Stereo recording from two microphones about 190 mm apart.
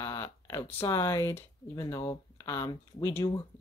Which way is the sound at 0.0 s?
15° left (ahead or behind).